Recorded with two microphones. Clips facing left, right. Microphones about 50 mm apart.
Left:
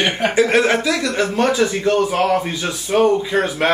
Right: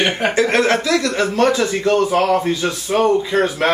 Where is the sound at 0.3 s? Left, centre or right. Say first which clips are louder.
Left 1 dB; centre.